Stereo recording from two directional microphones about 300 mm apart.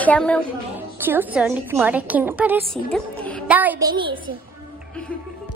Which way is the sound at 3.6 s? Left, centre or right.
Centre.